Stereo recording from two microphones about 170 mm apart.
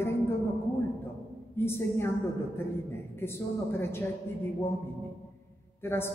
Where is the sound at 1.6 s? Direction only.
15° left (ahead or behind).